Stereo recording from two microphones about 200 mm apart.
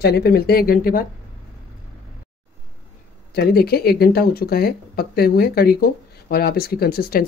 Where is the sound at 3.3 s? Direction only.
50° left (ahead or behind).